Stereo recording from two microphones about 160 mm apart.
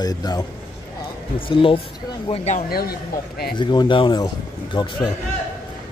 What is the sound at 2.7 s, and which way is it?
Speech, 75° left (ahead or behind).